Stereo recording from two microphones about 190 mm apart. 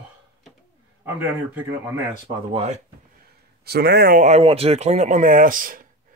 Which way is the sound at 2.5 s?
35° right (ahead or behind).